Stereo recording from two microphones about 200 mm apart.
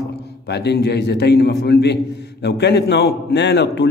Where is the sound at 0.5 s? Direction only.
55° left (ahead or behind).